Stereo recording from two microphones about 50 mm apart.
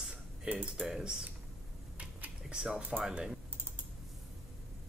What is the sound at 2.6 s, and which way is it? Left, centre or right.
Speech, centre.